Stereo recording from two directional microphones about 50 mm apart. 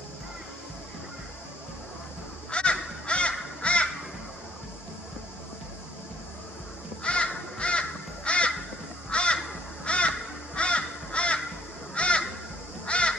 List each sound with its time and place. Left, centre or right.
2.5 s honk: left
7.0 s crow: left